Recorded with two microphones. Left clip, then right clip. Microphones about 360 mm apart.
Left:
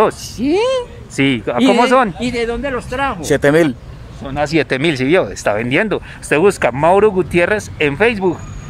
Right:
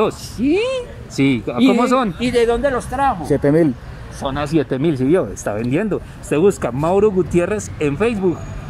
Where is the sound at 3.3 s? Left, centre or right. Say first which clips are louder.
Left 6 dB; left.